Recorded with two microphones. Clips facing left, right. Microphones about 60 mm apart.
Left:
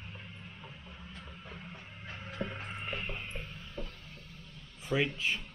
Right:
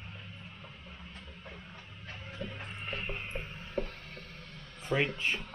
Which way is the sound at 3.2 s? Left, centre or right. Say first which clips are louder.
Right 3 dB; centre.